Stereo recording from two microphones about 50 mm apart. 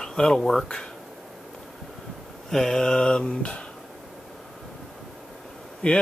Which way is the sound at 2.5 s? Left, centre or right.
Centre.